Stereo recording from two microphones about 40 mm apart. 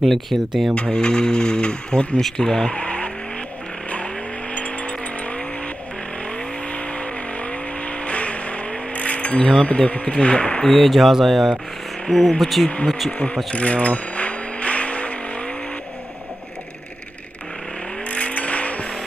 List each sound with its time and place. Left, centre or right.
0.0 s speech: centre
0.7 s speech: left
2.7 s speech: left
3.9 s vehicle: left
9.6 s speech: left
10.7 s speech: centre
13.5 s vehicle: left
18.0 s vehicle: left